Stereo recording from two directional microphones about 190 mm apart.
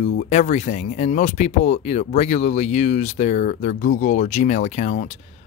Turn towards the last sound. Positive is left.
turn(degrees=40)  # may be behind; listen again after turning